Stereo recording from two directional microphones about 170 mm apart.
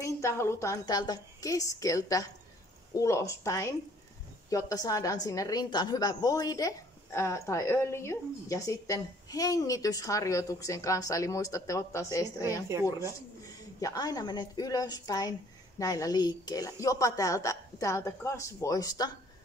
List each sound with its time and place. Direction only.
0.0 s a woman's voice: 15° left (ahead or behind)
13.7 s a woman's voice: 20° left (ahead or behind)